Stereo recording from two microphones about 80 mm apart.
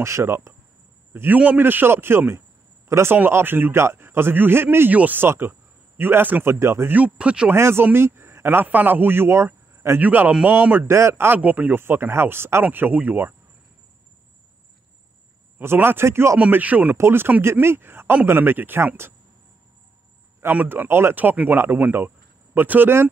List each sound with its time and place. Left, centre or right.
0.0 s speech: right
1.1 s a man's voice: right
6.9 s speech: centre
7.5 s a man's voice: right
9.9 s a man's voice: right
10.9 s a man's voice: right
15.6 s speech: right
16.3 s a man's voice: centre
16.9 s a man's voice: right
20.5 s a man's voice: right